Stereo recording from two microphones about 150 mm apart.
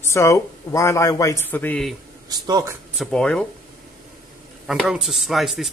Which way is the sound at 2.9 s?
5° left (ahead or behind).